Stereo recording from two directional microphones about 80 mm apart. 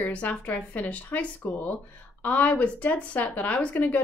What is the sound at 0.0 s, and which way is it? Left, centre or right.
A woman's voice, centre.